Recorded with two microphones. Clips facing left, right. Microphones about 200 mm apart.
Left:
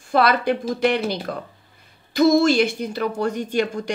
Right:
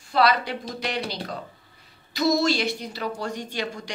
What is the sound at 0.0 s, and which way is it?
Speech, 50° left (ahead or behind).